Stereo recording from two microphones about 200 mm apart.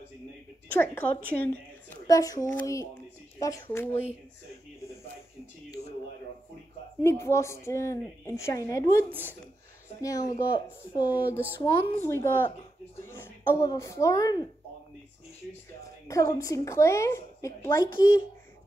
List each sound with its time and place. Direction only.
0.7 s a woman's voice: 10° left (ahead or behind)
7.0 s a woman's voice: 15° left (ahead or behind)
10.0 s a woman's voice: 15° left (ahead or behind)
11.1 s speech: 10° right (ahead or behind)
11.9 s a woman's voice: 10° left (ahead or behind)
15.8 s a woman's voice: 15° left (ahead or behind)